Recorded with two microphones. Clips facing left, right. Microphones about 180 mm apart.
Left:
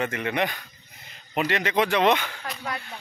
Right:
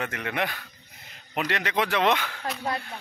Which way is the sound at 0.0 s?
Centre (ahead or behind).